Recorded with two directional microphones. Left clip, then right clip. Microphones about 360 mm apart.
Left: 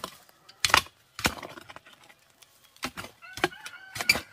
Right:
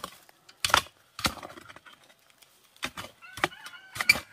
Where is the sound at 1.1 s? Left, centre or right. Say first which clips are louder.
Left 2 dB; centre.